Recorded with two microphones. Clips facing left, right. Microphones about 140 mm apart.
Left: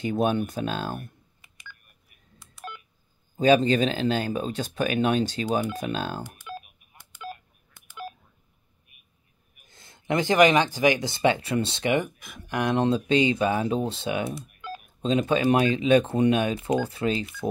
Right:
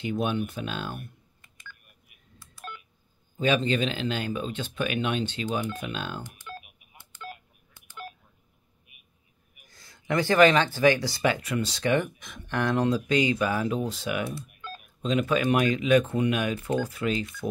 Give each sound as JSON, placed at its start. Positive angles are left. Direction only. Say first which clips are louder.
{"t": 0.0, "sound": "speech", "louder": "left 4 dB", "side_deg": 40}
{"t": 2.3, "sound": "telephone dialing", "louder": "left 2 dB", "side_deg": 20}
{"t": 3.3, "sound": "speech", "louder": "left 5 dB", "side_deg": 35}
{"t": 6.2, "sound": "telephone dialing", "louder": "left 3 dB", "side_deg": 15}
{"t": 9.7, "sound": "speech", "louder": "left 2 dB", "side_deg": 25}
{"t": 12.7, "sound": "speech", "louder": "left 3 dB", "side_deg": 25}
{"t": 14.6, "sound": "telephone dialing", "louder": "left 7 dB", "side_deg": 15}
{"t": 15.0, "sound": "speech", "louder": "left 2 dB", "side_deg": 30}
{"t": 16.5, "sound": "speech", "louder": "left 3 dB", "side_deg": 15}
{"t": 16.8, "sound": "speech", "louder": "left 2 dB", "side_deg": 30}